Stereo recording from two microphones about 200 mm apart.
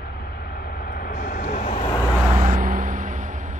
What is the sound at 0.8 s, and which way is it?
Vehicle, 45° left (ahead or behind).